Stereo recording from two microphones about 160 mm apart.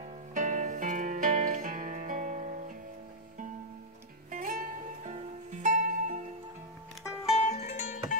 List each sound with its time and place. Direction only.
0.3 s music: 55° right (ahead or behind)
4.3 s music: 55° right (ahead or behind)
7.3 s music: 40° left (ahead or behind)